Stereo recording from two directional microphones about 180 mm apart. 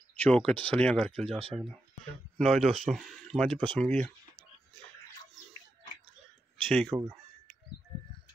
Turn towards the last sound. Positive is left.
turn(degrees=5)  # may be behind; listen again after turning